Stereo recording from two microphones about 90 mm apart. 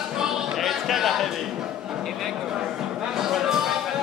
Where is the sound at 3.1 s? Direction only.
5° right (ahead or behind).